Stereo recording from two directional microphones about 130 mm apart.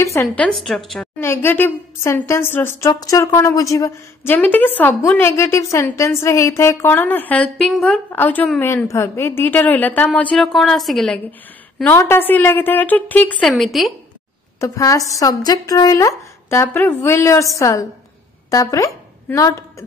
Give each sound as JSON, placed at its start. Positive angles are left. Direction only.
{"t": 0.0, "sound": "a woman's voice", "side_deg": 20}
{"t": 0.4, "sound": "a woman's voice", "side_deg": 5}
{"t": 1.2, "sound": "a woman's voice", "side_deg": 20}
{"t": 10.3, "sound": "a woman's voice", "side_deg": 0}
{"t": 11.8, "sound": "a woman's voice", "side_deg": 20}
{"t": 14.6, "sound": "a woman's voice", "side_deg": 25}